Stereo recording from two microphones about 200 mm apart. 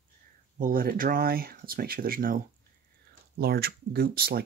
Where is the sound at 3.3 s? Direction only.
50° right (ahead or behind).